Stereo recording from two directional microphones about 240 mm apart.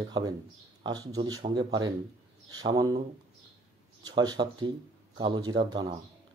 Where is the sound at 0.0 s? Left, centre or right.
Centre.